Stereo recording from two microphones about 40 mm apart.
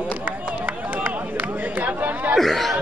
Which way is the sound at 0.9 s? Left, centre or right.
Right.